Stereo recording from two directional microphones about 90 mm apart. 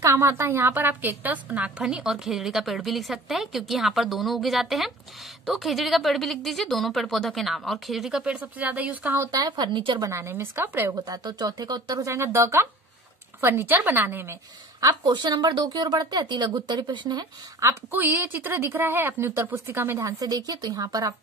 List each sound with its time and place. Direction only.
0.0 s a woman's voice: 30° right (ahead or behind)
9.3 s a woman's voice: 50° right (ahead or behind)
9.9 s a woman's voice: 35° right (ahead or behind)
11.1 s a woman's voice: 45° right (ahead or behind); by 14.4 s 25° right (ahead or behind)
14.8 s a woman's voice: 50° right (ahead or behind)
17.6 s a woman's voice: 30° right (ahead or behind)
20.0 s a woman's voice: 40° right (ahead or behind)